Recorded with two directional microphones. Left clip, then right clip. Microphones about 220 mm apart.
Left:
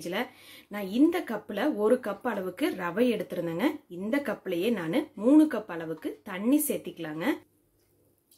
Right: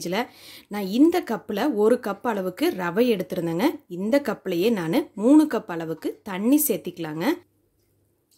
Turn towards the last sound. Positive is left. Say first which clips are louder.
# right 5 dB
turn(degrees=-50)  # may be behind; listen again after turning